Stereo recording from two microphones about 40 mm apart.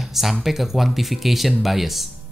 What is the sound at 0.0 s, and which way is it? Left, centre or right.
Speech, centre.